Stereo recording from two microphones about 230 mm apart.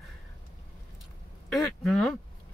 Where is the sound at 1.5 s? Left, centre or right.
Centre.